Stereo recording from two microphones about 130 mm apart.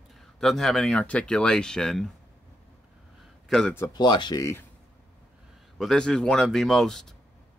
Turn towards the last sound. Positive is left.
turn(degrees=5)  # may be behind; listen again after turning